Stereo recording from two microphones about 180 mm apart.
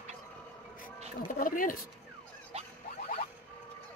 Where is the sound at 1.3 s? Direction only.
50° left (ahead or behind).